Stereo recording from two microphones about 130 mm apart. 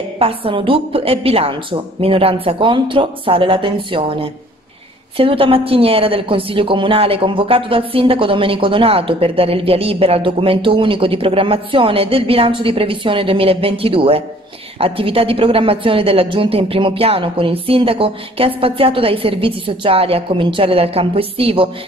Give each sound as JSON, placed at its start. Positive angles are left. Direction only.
{"t": 0.2, "sound": "a woman's voice", "side_deg": -45}